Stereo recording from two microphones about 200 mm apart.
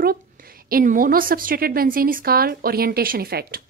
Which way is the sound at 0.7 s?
45° right (ahead or behind).